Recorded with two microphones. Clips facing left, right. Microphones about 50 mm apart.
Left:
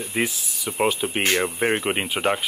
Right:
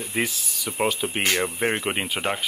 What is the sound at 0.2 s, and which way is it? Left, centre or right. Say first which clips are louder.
Speech: left 1 dB; centre.